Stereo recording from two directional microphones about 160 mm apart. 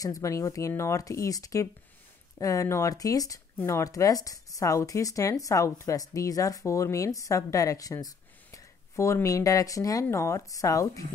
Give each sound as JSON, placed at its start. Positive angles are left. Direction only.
{"t": 0.0, "sound": "speech", "side_deg": 20}